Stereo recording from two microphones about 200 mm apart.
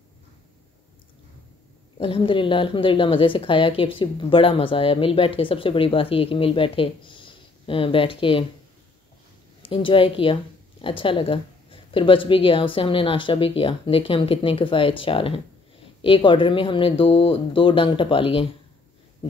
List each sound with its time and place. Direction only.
2.0 s a woman's voice: 25° left (ahead or behind)
9.6 s a woman's voice: 25° left (ahead or behind)